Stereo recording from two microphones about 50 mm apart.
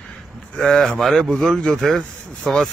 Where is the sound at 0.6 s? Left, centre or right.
Centre.